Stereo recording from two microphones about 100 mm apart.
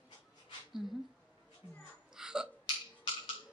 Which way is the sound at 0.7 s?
Centre (ahead or behind).